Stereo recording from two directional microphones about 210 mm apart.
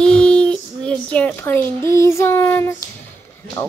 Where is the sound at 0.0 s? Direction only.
5° left (ahead or behind).